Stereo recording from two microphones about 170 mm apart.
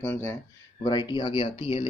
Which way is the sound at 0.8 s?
25° left (ahead or behind).